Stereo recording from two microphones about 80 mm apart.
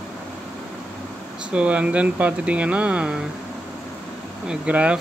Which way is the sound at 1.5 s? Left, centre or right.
Centre.